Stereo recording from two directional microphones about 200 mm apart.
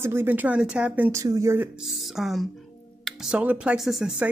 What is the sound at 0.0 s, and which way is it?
Speech, 10° right (ahead or behind).